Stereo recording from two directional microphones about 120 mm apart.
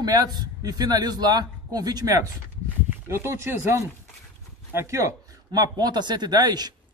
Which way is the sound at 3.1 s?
20° right (ahead or behind).